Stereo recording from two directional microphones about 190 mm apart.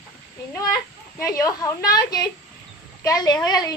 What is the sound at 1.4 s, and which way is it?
Speech, 15° left (ahead or behind).